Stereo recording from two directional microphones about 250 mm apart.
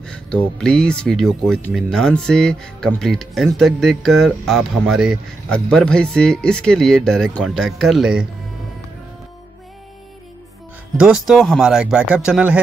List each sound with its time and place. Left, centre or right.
0.0 s speech: centre
11.0 s speech: centre